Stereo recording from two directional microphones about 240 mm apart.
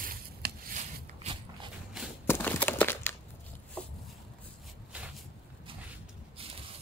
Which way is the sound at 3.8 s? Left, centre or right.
Centre.